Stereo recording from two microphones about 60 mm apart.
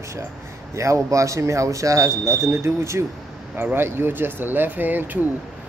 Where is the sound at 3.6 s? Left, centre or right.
Right.